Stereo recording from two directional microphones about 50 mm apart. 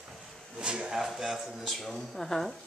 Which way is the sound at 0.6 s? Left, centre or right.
Centre.